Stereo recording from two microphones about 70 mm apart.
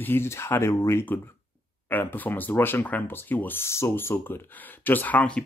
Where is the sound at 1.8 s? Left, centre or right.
Left.